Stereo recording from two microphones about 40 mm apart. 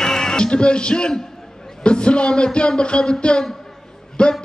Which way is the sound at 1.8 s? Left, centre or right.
Left.